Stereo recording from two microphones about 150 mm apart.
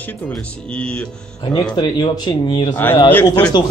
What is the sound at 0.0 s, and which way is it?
Speech, 5° left (ahead or behind).